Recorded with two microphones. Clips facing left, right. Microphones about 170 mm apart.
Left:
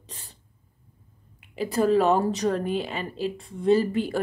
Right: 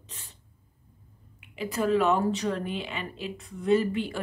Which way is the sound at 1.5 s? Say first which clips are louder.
Left 4 dB; 40° left (ahead or behind).